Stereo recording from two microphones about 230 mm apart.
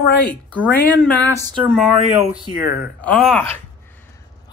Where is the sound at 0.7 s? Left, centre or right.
Centre.